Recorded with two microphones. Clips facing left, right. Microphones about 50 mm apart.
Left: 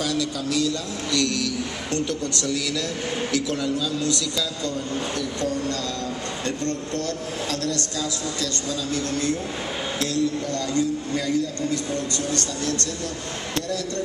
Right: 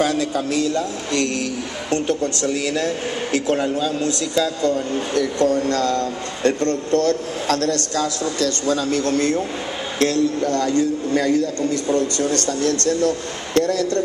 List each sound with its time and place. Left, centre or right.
0.0 s a man's voice: right
5.1 s speech: right